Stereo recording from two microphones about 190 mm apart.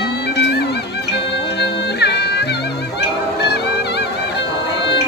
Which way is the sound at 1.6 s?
60° left (ahead or behind).